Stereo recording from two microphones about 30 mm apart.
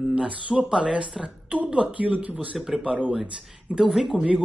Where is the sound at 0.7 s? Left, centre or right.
Right.